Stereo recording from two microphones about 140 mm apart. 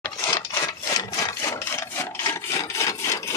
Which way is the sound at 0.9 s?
20° left (ahead or behind).